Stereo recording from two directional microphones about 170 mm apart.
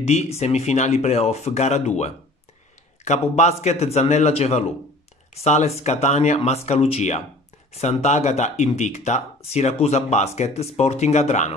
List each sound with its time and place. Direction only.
0.0 s speech: 40° left (ahead or behind)